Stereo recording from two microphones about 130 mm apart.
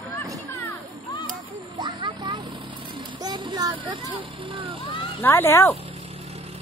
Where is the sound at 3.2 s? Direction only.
35° right (ahead or behind).